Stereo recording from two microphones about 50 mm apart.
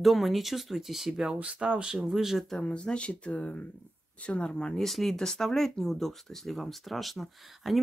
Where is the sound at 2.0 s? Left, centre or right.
Centre.